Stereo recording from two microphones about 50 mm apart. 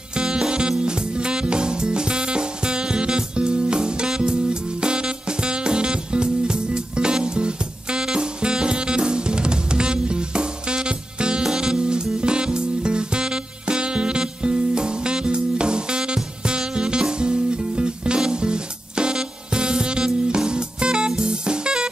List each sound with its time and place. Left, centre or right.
0.1 s music: centre